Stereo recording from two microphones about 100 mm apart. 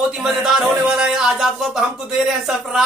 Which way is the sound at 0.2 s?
5° right (ahead or behind).